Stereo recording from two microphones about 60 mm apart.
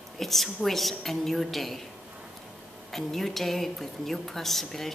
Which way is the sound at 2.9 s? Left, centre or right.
Centre.